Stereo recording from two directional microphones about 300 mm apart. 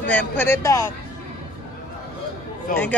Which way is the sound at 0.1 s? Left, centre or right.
Centre.